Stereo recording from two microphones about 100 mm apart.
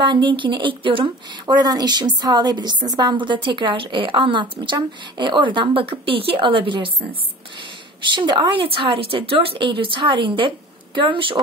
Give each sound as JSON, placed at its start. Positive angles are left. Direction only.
{"t": 0.0, "sound": "a woman's voice", "side_deg": -55}
{"t": 1.4, "sound": "a woman's voice", "side_deg": -40}